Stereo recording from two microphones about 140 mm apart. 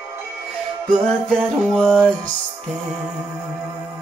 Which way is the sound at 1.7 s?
5° left (ahead or behind).